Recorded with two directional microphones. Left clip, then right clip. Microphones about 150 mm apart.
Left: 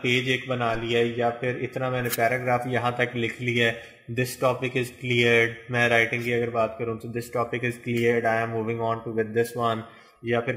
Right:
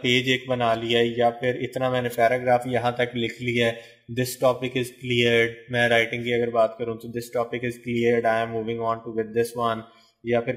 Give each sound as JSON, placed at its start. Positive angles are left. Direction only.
{"t": 0.0, "sound": "speech", "side_deg": -40}